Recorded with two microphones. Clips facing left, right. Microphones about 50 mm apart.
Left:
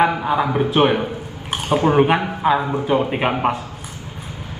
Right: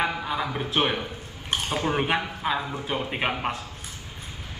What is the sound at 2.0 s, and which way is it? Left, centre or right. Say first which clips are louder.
Speech: left 10 dB; centre.